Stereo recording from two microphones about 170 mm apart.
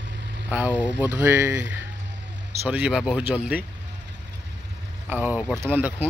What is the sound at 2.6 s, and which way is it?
Speech, 5° right (ahead or behind).